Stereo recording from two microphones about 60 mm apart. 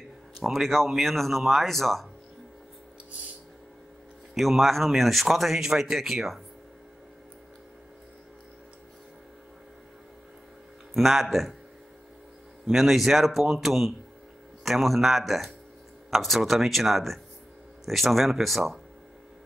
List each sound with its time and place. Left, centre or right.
0.4 s speech: centre
4.4 s speech: centre
10.9 s speech: centre
12.6 s speech: centre